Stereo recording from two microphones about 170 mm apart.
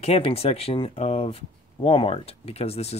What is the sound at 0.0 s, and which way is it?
Speech, 35° left (ahead or behind).